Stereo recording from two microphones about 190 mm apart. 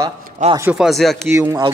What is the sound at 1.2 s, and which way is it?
Speech, 15° right (ahead or behind).